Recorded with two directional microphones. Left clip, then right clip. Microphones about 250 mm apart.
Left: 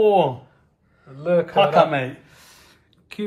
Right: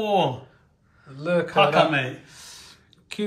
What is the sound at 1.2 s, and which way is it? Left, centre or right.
Speech, centre.